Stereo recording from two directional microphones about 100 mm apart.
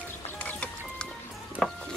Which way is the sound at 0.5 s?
10° left (ahead or behind).